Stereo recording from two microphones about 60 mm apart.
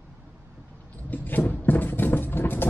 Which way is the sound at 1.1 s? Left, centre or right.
Left.